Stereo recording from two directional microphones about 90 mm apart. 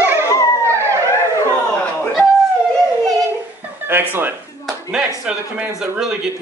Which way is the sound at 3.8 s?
25° right (ahead or behind).